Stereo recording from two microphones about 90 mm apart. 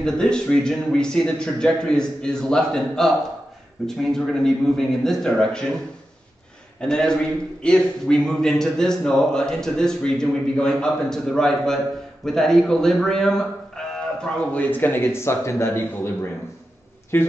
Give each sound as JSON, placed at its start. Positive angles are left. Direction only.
{"t": 0.0, "sound": "a man's voice", "side_deg": 10}
{"t": 6.8, "sound": "a man's voice", "side_deg": 10}